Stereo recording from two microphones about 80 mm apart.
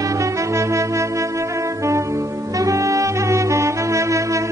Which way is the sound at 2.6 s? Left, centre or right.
Right.